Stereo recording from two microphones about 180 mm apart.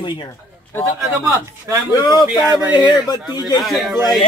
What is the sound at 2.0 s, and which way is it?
A man's voice, 25° left (ahead or behind).